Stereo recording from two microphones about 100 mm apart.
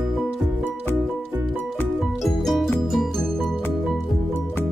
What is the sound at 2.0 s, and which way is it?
Music, centre (ahead or behind).